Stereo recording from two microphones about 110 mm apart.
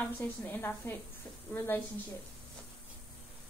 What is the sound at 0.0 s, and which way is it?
A woman's voice, 15° left (ahead or behind).